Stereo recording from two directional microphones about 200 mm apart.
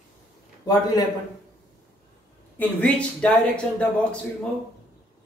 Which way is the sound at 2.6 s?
5° left (ahead or behind).